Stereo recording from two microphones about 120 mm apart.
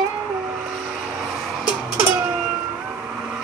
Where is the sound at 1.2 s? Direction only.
Centre (ahead or behind).